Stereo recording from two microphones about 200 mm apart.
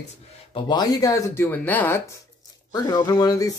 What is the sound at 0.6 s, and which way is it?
Speech, 20° left (ahead or behind).